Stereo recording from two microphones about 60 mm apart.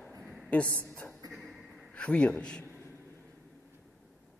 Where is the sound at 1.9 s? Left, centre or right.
Left.